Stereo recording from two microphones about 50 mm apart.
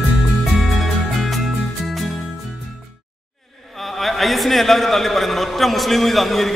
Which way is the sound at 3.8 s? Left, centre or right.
Centre.